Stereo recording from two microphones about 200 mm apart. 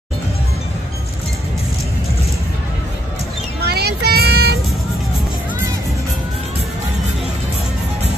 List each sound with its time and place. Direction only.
3.6 s child singing: 55° right (ahead or behind)